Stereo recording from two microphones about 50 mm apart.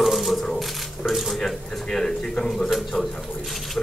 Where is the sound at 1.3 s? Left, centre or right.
Centre.